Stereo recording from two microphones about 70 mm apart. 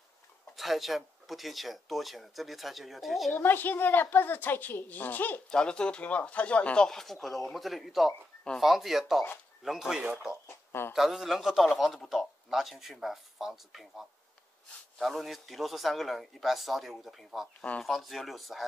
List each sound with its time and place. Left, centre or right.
0.6 s a man's voice: centre
3.3 s a woman's voice: left
5.5 s speech: centre
6.9 s a man's voice: centre
10.4 s a sound: left
10.9 s a man's voice: centre
17.6 s a woman's voice: centre
17.8 s a man's voice: centre